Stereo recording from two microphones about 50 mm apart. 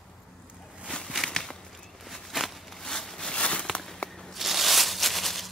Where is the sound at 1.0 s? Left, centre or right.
Centre.